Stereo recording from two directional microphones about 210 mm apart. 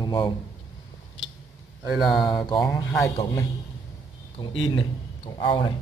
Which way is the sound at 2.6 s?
15° left (ahead or behind).